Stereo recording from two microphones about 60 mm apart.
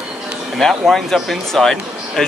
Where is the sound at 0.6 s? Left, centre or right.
Centre.